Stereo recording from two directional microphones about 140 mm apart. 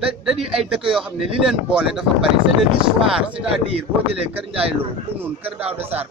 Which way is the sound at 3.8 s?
40° right (ahead or behind).